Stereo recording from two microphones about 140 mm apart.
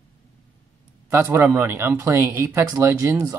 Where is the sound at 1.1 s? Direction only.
15° right (ahead or behind).